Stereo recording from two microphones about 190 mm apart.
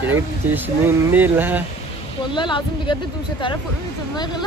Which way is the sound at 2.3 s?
25° left (ahead or behind).